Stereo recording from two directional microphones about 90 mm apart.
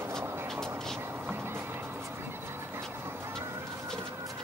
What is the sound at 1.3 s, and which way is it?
Music, 25° right (ahead or behind).